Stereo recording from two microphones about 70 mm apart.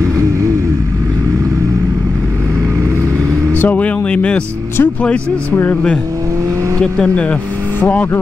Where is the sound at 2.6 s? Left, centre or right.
Right.